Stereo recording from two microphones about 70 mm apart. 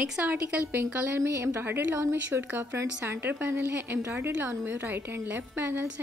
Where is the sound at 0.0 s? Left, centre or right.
Right.